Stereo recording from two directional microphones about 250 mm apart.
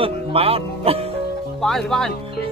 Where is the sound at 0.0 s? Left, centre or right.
Right.